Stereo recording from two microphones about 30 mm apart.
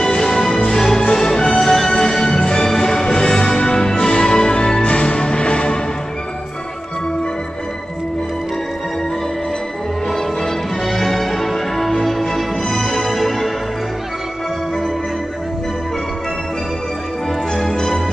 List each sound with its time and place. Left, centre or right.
0.0 s music: centre
4.8 s music: left
10.1 s music: centre